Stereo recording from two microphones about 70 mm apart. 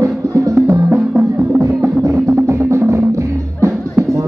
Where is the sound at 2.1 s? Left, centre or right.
Right.